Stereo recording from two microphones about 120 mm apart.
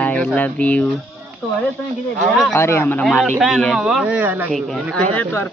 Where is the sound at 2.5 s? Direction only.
20° left (ahead or behind).